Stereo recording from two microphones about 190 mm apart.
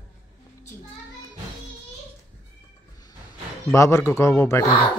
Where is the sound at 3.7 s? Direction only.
15° left (ahead or behind).